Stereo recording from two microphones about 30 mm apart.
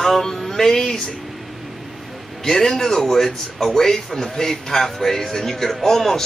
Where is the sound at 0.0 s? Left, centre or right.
Centre.